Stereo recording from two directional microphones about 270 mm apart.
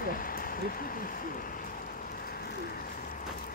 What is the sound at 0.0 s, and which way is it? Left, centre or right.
Speech, left.